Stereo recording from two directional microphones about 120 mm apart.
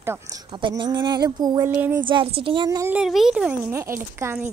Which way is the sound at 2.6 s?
25° right (ahead or behind).